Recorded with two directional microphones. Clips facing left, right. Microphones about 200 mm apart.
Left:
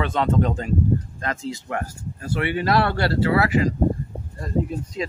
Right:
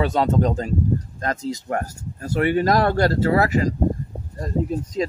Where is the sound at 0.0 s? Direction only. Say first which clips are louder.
Right 2 dB; 40° right (ahead or behind).